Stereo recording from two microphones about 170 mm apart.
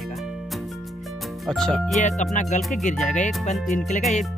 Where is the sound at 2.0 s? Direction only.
45° left (ahead or behind).